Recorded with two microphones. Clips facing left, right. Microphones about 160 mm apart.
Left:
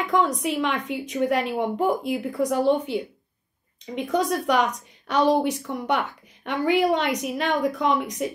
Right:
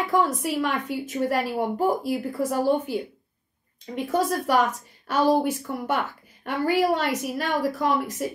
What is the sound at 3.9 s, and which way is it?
A woman's voice, 5° right (ahead or behind).